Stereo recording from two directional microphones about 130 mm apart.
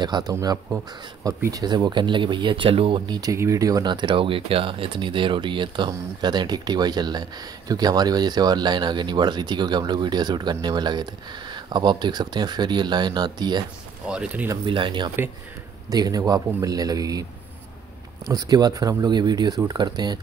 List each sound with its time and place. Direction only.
0.0 s speech: 30° right (ahead or behind)
14.0 s speech: 10° right (ahead or behind)
14.7 s speech: 40° right (ahead or behind)
15.9 s speech: 30° right (ahead or behind)